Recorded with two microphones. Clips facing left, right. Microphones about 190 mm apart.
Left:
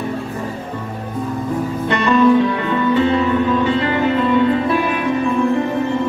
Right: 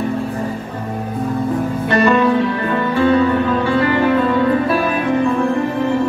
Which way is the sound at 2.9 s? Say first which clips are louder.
Right 2 dB; 20° left (ahead or behind).